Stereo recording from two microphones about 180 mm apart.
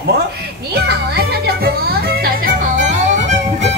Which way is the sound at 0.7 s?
65° right (ahead or behind).